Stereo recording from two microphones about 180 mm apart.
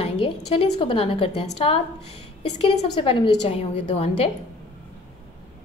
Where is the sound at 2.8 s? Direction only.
30° left (ahead or behind).